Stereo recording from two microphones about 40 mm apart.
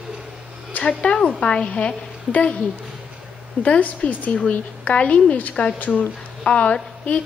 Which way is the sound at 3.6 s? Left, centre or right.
Left.